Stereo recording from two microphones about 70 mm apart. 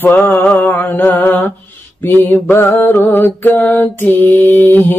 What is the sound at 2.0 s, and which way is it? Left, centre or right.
Mantra, left.